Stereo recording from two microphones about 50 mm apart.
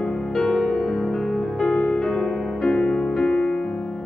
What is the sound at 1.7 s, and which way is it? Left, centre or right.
Music, left.